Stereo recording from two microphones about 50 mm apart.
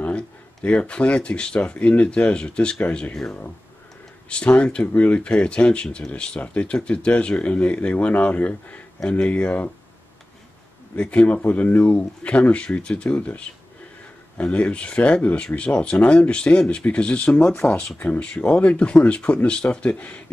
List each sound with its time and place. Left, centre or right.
0.7 s speech: left
11.0 s speech: left
18.2 s speech: left